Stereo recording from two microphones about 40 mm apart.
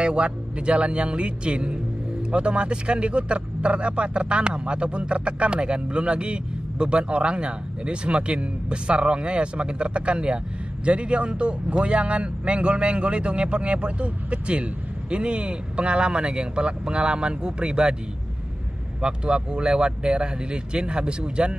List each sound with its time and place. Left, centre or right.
0.0 s speech: right
18.9 s speech: right